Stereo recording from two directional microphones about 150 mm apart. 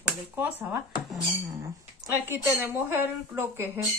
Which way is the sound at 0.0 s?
10° right (ahead or behind).